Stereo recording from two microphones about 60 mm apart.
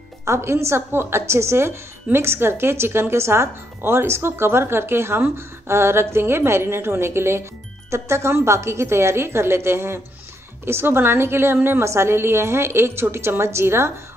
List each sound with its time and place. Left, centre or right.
0.2 s a woman's voice: right